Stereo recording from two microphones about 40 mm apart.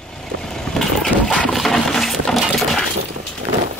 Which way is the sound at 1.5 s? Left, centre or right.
Centre.